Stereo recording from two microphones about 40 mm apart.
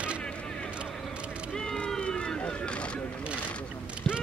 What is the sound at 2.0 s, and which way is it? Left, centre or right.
Run, left.